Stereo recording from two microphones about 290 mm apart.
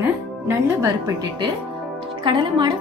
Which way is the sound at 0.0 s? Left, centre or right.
Centre.